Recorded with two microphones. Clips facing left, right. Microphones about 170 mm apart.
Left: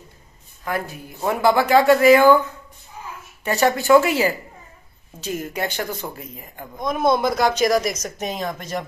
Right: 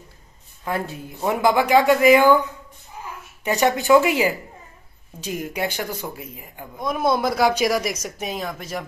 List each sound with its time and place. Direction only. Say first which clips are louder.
0.7 s speech: even; 25° right (ahead or behind)
3.4 s speech: left 1 dB; 15° right (ahead or behind)